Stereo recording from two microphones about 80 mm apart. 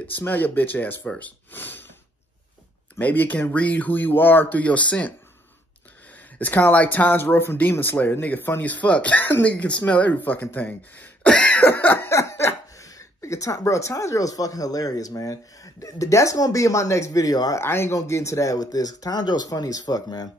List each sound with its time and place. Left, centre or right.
0.0 s speech: left
3.0 s speech: left
6.3 s speech: left
11.2 s cough: centre
12.1 s speech: left
17.6 s speech: left